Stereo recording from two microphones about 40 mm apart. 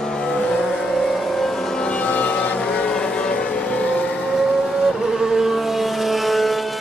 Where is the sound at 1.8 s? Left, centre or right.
Left.